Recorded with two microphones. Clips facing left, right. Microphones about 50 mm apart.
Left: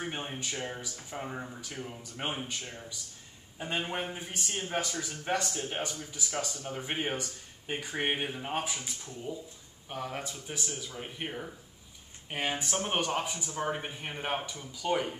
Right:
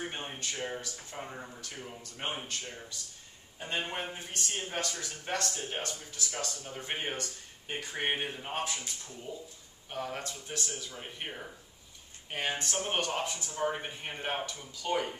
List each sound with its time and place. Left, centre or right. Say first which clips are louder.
0.0 s a sound: left 2 dB; centre
0.4 s speech: even; centre
5.5 s speech: left 2 dB; centre